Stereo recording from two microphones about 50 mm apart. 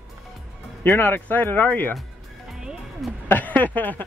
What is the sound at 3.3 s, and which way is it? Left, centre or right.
Speech, left.